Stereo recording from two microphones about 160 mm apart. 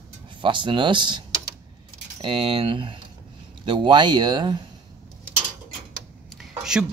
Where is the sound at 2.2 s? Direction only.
35° right (ahead or behind).